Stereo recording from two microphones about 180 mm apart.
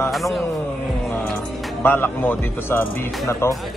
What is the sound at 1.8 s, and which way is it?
Speech, 10° left (ahead or behind).